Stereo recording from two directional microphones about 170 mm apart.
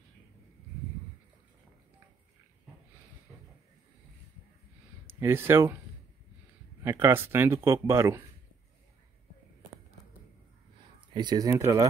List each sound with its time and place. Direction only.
5.0 s speech: 15° right (ahead or behind)
6.8 s speech: 15° right (ahead or behind)
11.1 s speech: 25° right (ahead or behind)